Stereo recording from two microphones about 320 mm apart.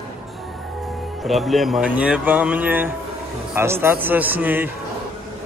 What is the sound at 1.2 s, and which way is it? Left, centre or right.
Speech, centre.